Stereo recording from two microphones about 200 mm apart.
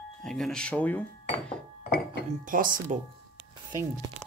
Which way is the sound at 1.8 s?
50° left (ahead or behind).